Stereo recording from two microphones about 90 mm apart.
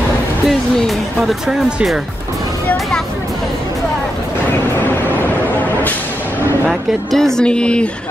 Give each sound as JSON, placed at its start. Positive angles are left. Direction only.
{"t": 0.5, "sound": "speech", "side_deg": 0}
{"t": 4.7, "sound": "vehicle", "side_deg": 20}
{"t": 6.7, "sound": "speech", "side_deg": 5}